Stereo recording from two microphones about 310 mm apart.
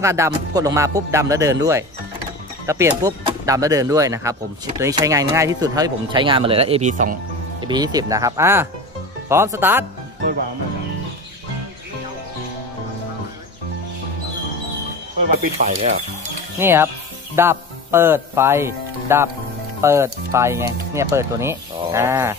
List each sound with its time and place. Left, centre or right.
0.0 s speech: centre
7.6 s speech: centre
15.6 s speech: right
16.5 s speech: centre